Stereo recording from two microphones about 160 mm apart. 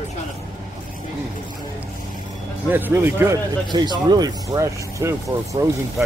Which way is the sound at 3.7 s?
25° right (ahead or behind).